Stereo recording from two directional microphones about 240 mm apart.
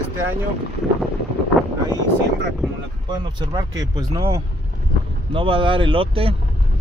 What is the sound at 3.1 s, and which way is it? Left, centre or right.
Speech, centre.